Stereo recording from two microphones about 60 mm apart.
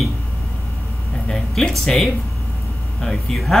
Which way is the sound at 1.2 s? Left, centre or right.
Centre.